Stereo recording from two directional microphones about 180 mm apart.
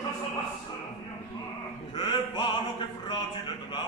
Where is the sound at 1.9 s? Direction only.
30° left (ahead or behind).